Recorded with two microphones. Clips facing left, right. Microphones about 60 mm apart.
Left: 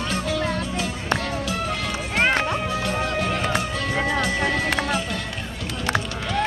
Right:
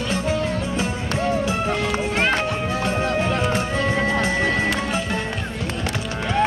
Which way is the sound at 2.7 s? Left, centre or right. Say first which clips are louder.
Right 3 dB; right.